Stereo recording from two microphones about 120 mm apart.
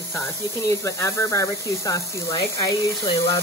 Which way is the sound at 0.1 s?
25° left (ahead or behind).